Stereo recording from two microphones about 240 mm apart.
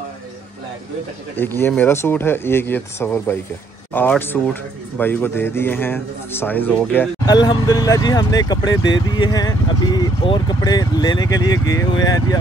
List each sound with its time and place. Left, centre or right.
1.3 s speech: centre